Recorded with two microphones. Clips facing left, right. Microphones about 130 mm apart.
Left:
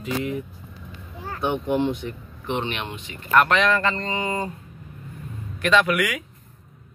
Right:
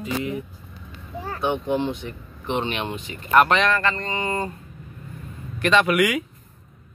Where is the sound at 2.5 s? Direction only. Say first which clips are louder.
Right 2 dB; 30° right (ahead or behind).